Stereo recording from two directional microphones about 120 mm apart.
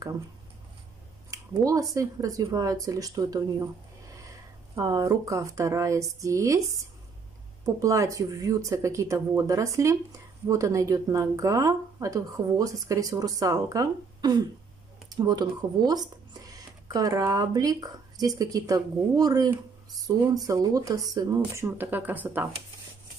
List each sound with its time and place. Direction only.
1.3 s speech: 25° right (ahead or behind)
4.7 s speech: 30° right (ahead or behind)
7.6 s speech: 25° right (ahead or behind)